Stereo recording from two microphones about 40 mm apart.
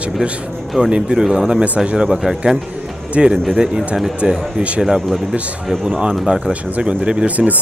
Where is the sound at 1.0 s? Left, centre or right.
Centre.